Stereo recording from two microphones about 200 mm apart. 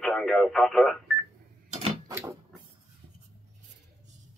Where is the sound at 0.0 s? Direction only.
Centre (ahead or behind).